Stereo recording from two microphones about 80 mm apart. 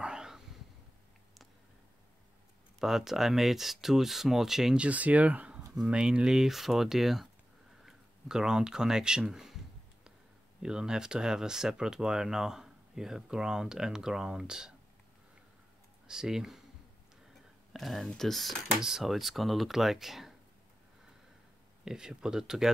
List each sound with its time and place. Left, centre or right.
0.0 s a sound: centre
2.8 s speech: centre
4.8 s speech: centre
10.6 s speech: centre
16.1 s speech: centre
17.7 s speech: centre
21.8 s speech: centre